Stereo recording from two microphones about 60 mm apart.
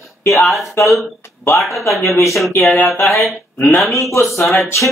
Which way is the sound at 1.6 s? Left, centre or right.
Centre.